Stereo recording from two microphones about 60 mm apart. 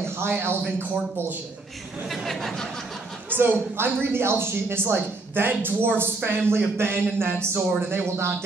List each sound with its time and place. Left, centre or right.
2.0 s speech: centre
3.3 s speech: right